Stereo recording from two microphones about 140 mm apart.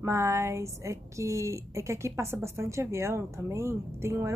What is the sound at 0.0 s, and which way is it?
A woman's voice, 20° right (ahead or behind).